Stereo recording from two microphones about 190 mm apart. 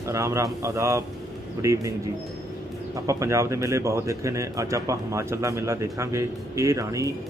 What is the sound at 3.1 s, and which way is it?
A man's voice, 15° right (ahead or behind).